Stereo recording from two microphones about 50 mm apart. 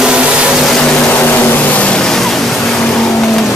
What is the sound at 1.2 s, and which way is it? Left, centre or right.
Vehicle, left.